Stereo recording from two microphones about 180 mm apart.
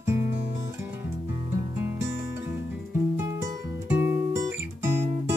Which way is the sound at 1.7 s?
15° right (ahead or behind).